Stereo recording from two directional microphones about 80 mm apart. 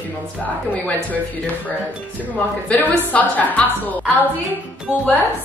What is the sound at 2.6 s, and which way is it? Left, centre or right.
A woman's voice, centre.